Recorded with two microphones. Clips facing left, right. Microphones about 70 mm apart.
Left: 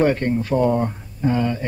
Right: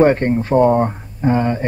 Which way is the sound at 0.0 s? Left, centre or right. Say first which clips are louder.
Right 5 dB; right.